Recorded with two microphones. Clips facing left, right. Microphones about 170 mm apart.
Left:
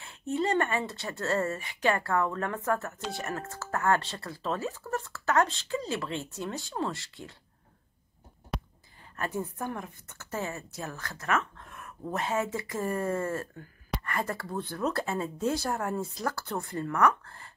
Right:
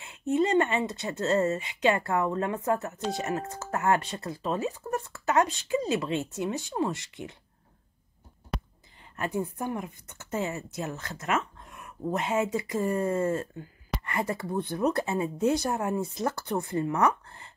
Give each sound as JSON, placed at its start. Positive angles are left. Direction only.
{"t": 0.0, "sound": "a woman's voice", "side_deg": -20}
{"t": 8.5, "sound": "whispering", "side_deg": 0}
{"t": 9.1, "sound": "a woman's voice", "side_deg": -15}